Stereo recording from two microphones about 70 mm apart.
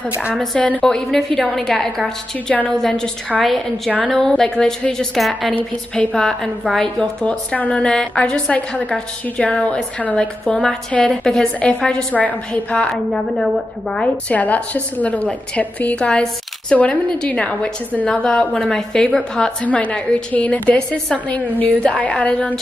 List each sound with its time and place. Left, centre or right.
0.6 s a woman's voice: centre
0.8 s a woman's voice: centre
13.1 s a woman's voice: centre
14.3 s a woman's voice: left
19.6 s a woman's voice: left